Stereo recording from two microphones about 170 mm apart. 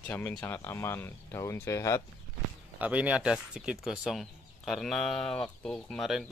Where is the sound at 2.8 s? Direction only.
10° right (ahead or behind).